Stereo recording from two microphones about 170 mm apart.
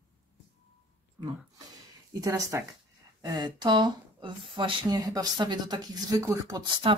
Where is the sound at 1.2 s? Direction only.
25° right (ahead or behind).